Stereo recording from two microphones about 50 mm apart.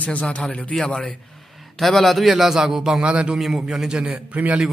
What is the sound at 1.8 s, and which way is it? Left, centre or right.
A man's voice, centre.